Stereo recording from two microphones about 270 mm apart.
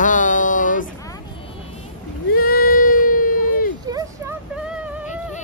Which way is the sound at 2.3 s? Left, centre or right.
Left.